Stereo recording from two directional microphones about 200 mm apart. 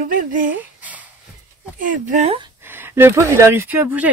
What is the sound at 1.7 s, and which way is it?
Speech, 40° right (ahead or behind).